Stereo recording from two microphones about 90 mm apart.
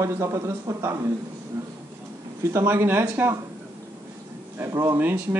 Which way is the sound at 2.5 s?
25° right (ahead or behind).